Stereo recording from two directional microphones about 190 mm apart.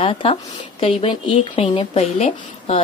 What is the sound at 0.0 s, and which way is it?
Speech, 30° left (ahead or behind).